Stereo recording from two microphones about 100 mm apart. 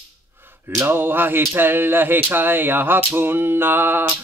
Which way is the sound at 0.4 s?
20° right (ahead or behind).